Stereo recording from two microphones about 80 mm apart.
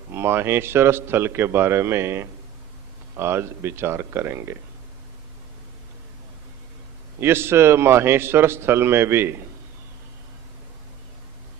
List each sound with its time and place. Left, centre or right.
0.1 s a man's voice: right
7.2 s a man's voice: right